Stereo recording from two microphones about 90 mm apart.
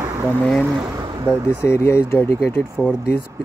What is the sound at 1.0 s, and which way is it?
Vehicle, 50° right (ahead or behind).